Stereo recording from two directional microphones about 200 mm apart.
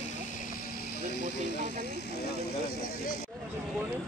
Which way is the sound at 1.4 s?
60° left (ahead or behind).